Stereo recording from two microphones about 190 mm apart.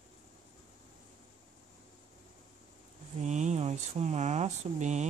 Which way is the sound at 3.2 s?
40° right (ahead or behind).